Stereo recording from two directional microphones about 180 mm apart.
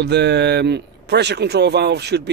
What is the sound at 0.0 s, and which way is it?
Speech, 70° right (ahead or behind).